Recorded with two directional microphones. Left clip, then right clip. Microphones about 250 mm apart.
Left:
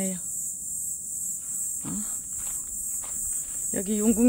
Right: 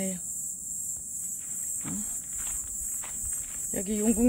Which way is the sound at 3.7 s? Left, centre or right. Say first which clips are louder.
Left 3 dB; centre.